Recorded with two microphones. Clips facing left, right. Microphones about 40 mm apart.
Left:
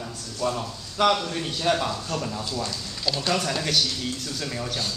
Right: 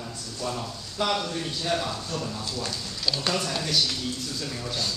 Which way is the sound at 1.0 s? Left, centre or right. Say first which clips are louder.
Left 6 dB; left.